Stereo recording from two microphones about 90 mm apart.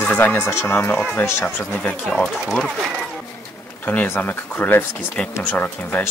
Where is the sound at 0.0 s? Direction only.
20° left (ahead or behind).